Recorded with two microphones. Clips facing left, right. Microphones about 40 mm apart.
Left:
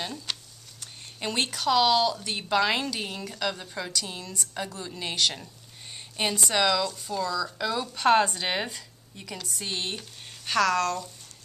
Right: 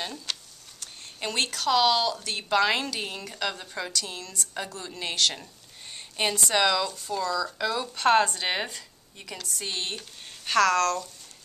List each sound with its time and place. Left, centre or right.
0.0 s a woman's voice: centre